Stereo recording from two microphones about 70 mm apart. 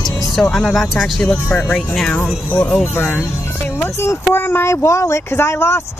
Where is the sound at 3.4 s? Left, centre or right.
Left.